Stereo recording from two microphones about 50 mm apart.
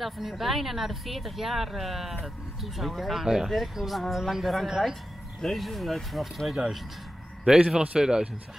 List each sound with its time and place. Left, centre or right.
0.0 s a woman's voice: centre
5.4 s a woman's voice: centre
7.4 s speech: centre